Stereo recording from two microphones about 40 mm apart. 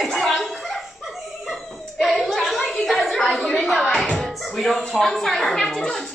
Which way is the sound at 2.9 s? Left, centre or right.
Centre.